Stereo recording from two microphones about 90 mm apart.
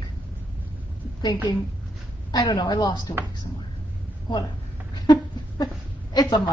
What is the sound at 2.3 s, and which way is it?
Speech, 50° left (ahead or behind).